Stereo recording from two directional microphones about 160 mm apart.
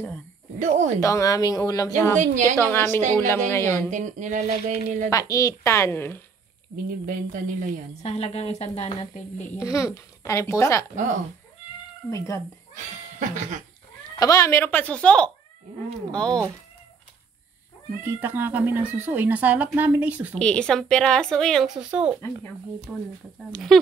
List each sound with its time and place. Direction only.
0.6 s speech: 50° right (ahead or behind)
1.0 s a child's voice: 20° left (ahead or behind)
2.1 s speech: 50° right (ahead or behind)
2.5 s a child's voice: 15° left (ahead or behind)
3.9 s speech: 50° right (ahead or behind)
5.1 s a child's voice: 20° left (ahead or behind)
7.1 s speech: 55° right (ahead or behind)
8.0 s speech: 40° left (ahead or behind)
9.6 s a child's voice: 20° left (ahead or behind)
12.1 s a child's voice: 20° left (ahead or behind)
12.7 s goat: 50° right (ahead or behind)
14.1 s a child's voice: 20° left (ahead or behind)
18.0 s speech: 15° right (ahead or behind)
20.3 s a woman's voice: 5° left (ahead or behind)